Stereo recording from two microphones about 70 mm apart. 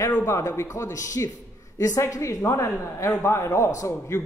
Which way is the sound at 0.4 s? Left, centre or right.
Left.